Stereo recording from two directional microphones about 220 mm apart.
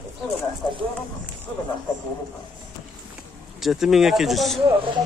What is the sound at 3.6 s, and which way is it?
Speech, centre (ahead or behind).